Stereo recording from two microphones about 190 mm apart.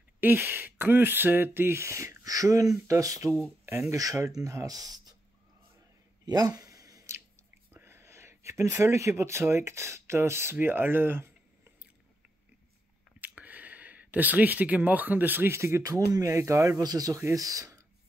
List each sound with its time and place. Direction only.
0.2 s speech: 10° right (ahead or behind)
6.2 s a sound: 20° right (ahead or behind)
7.7 s speech: 10° right (ahead or behind)
13.2 s speech: 10° right (ahead or behind)